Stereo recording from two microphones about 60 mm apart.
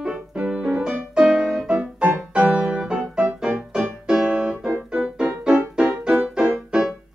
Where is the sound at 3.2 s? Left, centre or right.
Centre.